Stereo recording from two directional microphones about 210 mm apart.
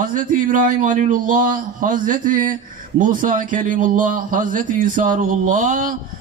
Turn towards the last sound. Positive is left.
turn(degrees=-35)  # may be behind; listen again after turning